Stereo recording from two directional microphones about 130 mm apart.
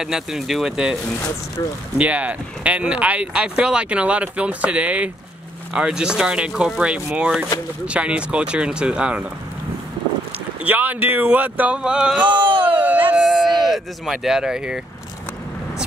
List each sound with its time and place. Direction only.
0.0 s speech: 5° right (ahead or behind)
2.0 s speech: 10° right (ahead or behind)
10.6 s speech: 10° right (ahead or behind)
12.3 s speech: 40° right (ahead or behind)
13.1 s a sound: centre (ahead or behind)